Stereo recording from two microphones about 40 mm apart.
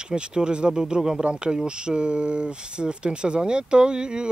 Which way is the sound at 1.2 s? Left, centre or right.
Right.